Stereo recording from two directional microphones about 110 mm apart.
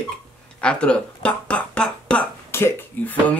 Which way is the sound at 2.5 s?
20° left (ahead or behind).